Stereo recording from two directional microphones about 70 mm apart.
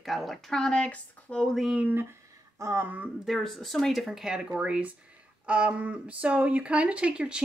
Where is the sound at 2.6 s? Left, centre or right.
Right.